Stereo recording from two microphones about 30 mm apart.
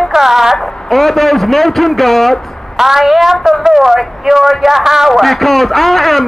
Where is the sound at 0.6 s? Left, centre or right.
Centre.